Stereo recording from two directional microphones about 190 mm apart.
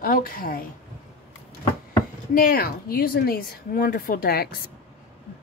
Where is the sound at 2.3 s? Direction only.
50° left (ahead or behind).